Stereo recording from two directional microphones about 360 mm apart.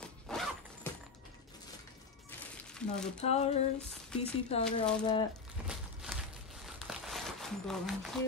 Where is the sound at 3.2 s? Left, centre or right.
Centre.